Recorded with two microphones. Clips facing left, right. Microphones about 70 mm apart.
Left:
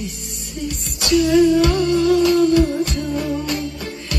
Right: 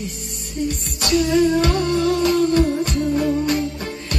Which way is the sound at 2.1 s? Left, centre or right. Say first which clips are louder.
Left 3 dB; right.